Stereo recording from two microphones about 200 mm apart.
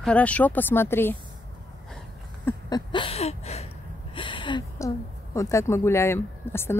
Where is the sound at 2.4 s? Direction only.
20° left (ahead or behind).